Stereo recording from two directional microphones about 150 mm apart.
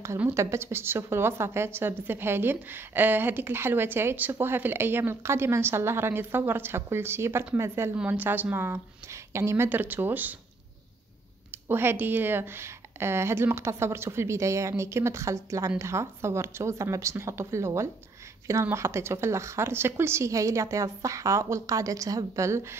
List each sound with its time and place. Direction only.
0.0 s a woman's voice: 15° right (ahead or behind)
11.5 s a woman's voice: 15° right (ahead or behind)